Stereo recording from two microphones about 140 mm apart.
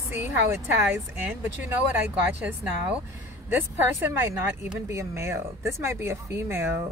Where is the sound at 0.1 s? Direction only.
15° right (ahead or behind).